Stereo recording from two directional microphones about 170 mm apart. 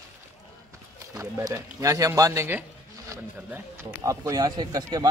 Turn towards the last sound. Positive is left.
turn(degrees=-25)  # may be behind; listen again after turning